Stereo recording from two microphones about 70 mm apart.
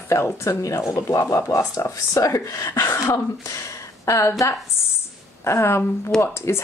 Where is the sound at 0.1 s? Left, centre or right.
Left.